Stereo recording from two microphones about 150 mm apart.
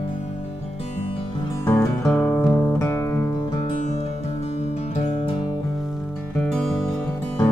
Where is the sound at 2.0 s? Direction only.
10° left (ahead or behind).